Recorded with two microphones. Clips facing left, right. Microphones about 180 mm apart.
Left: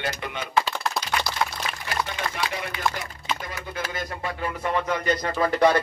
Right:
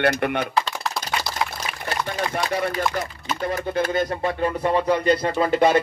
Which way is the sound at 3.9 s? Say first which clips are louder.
Right 9 dB; 30° right (ahead or behind).